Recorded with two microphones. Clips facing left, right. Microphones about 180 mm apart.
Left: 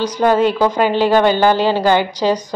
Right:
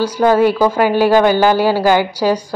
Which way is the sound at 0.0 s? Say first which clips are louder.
Right 2 dB; 10° right (ahead or behind).